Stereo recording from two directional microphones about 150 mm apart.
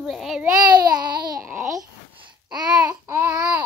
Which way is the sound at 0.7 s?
25° right (ahead or behind).